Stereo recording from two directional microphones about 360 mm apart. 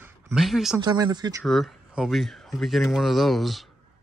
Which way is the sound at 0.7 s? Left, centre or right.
Centre.